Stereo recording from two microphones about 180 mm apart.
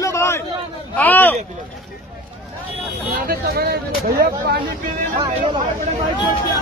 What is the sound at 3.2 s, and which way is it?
Speech, 60° right (ahead or behind).